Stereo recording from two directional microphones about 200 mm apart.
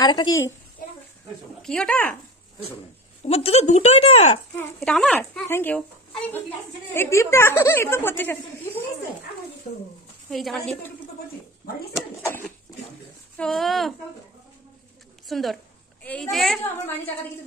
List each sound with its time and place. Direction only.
0.0 s a woman's voice: 20° left (ahead or behind)
1.6 s a woman's voice: 5° left (ahead or behind)
3.3 s speech: 30° left (ahead or behind)
4.6 s a woman's voice: 5° left (ahead or behind)
10.3 s a woman's voice: centre (ahead or behind)
12.3 s a sound: 10° left (ahead or behind)
13.4 s a woman's voice: centre (ahead or behind)
15.2 s a woman's voice: centre (ahead or behind)